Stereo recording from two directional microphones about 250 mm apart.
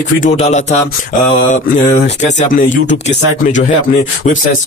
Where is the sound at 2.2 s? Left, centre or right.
Left.